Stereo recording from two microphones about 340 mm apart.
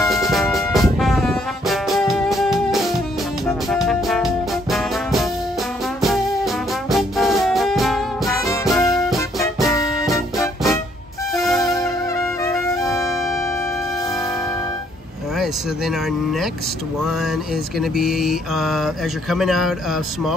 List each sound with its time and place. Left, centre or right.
0.0 s music: centre
17.7 s speech: centre